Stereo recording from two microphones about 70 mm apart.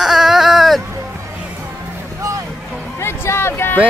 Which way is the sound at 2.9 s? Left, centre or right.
Left.